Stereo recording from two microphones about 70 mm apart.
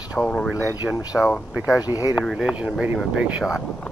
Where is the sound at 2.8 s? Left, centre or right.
Centre.